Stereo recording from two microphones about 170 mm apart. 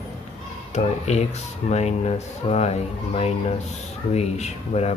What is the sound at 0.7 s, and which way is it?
Speech, 40° left (ahead or behind).